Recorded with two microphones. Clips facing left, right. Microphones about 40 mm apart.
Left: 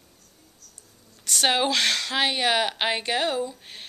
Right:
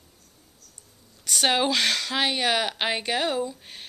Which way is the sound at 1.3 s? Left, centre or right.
Centre.